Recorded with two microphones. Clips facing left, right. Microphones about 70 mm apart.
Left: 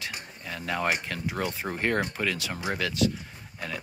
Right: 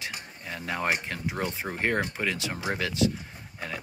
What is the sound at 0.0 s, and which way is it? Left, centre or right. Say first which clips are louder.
Speech: even; right.